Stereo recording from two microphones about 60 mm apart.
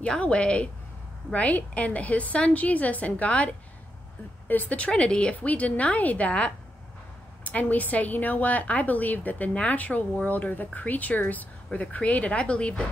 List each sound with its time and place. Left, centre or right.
0.2 s speech: centre